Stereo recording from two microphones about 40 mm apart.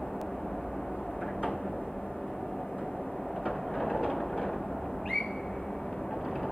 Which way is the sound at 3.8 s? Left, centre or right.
Centre.